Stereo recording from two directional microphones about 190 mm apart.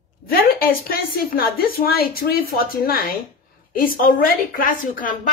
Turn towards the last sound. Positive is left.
turn(degrees=45)  # may be behind; listen again after turning